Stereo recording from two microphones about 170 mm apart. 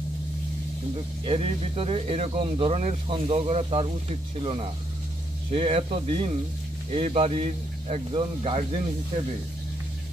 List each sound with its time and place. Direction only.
1.2 s speech: 35° right (ahead or behind)